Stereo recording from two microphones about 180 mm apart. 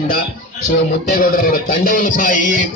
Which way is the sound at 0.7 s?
55° left (ahead or behind).